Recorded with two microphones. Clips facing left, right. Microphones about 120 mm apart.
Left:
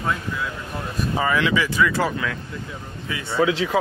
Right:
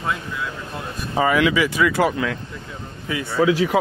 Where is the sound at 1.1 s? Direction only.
30° right (ahead or behind).